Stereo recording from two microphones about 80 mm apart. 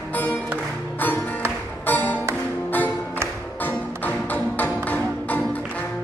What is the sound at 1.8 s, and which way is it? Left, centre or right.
Music, left.